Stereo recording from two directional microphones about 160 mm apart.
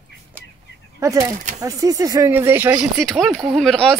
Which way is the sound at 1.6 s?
20° right (ahead or behind).